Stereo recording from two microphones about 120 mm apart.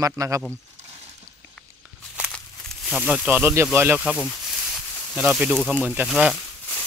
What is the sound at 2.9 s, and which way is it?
Speech, 5° right (ahead or behind).